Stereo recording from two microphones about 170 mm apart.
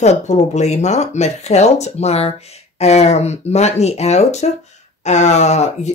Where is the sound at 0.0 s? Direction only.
45° left (ahead or behind).